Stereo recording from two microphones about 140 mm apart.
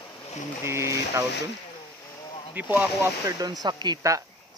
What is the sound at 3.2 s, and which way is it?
Speech, 25° right (ahead or behind).